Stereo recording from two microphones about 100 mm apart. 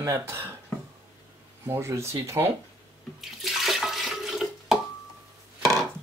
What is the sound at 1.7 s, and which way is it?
Speech, 25° right (ahead or behind).